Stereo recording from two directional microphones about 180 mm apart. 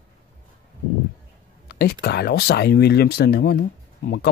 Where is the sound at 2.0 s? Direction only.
60° left (ahead or behind).